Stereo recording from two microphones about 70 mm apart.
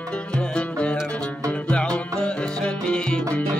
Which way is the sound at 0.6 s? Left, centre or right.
Centre.